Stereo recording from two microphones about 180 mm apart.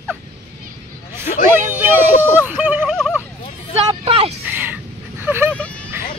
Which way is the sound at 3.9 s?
35° right (ahead or behind).